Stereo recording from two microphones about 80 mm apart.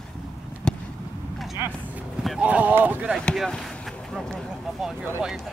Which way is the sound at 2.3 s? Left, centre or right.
Centre.